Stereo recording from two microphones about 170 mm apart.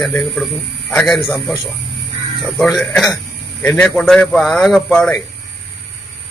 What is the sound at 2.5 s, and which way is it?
A man's voice, centre (ahead or behind).